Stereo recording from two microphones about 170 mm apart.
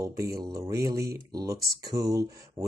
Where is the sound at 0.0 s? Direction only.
20° right (ahead or behind).